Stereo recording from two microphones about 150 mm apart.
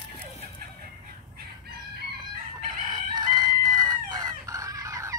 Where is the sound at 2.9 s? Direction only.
30° right (ahead or behind).